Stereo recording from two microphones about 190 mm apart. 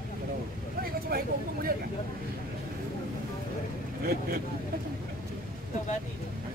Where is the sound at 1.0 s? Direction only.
50° right (ahead or behind).